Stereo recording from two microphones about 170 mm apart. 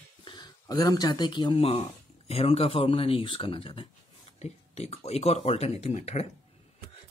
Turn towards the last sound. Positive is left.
turn(degrees=40)  # may be behind; listen again after turning